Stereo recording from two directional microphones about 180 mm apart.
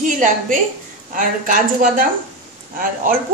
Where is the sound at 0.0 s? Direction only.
45° right (ahead or behind).